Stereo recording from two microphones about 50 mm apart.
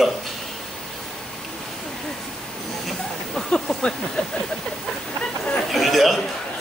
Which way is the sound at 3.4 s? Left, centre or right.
Centre.